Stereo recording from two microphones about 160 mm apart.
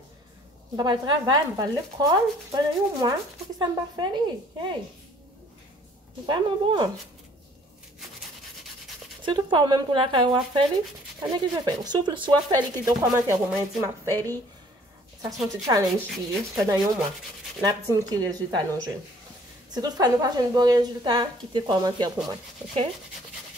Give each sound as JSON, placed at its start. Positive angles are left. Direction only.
{"t": 0.7, "sound": "speech", "side_deg": -25}
{"t": 6.2, "sound": "speech", "side_deg": -30}
{"t": 9.2, "sound": "speech", "side_deg": -30}
{"t": 14.1, "sound": "speech", "side_deg": 15}
{"t": 15.6, "sound": "speech", "side_deg": -25}